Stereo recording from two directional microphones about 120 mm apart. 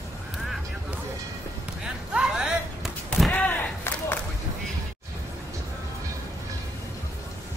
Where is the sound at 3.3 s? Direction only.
15° left (ahead or behind).